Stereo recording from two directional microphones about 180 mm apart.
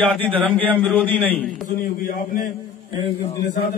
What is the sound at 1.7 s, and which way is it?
Speech, 50° left (ahead or behind).